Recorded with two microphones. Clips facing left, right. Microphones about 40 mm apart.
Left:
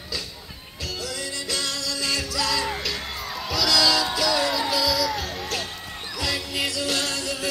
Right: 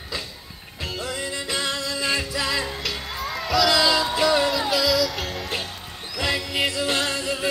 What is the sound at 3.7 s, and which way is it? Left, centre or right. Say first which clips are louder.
Music: right 1 dB; right.